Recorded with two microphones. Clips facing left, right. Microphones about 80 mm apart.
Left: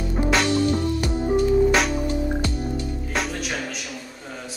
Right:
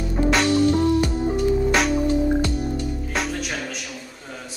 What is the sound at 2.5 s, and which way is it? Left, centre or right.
Music, centre.